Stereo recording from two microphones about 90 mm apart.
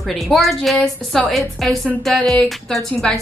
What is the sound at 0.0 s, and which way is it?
A woman's voice, centre (ahead or behind).